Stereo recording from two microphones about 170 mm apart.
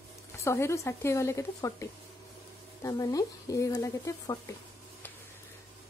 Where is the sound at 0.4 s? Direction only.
15° left (ahead or behind).